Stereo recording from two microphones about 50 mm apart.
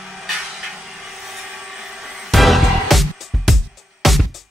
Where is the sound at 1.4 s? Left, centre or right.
Centre.